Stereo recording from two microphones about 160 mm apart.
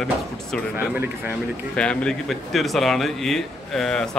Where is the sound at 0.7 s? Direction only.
10° right (ahead or behind).